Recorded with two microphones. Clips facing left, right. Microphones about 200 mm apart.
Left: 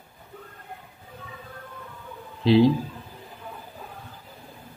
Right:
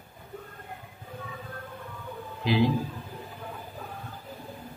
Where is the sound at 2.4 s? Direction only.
30° left (ahead or behind).